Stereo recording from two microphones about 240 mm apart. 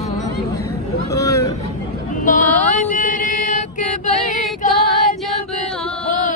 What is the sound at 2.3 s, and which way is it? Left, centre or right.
Mantra, left.